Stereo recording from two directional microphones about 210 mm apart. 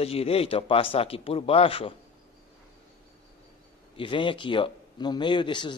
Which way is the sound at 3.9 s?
25° left (ahead or behind).